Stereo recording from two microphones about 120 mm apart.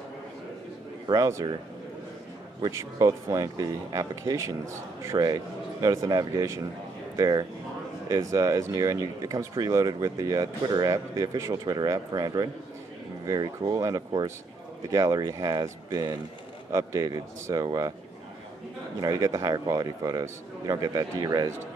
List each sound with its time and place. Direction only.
1.0 s a man's voice: 30° right (ahead or behind)
2.6 s a man's voice: 25° right (ahead or behind)
18.9 s a man's voice: 30° right (ahead or behind)